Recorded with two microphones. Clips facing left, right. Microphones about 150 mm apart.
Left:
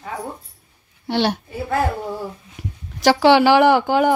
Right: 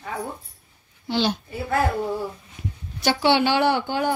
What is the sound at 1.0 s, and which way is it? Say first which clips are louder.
Speech: left 3 dB; 65° left (ahead or behind).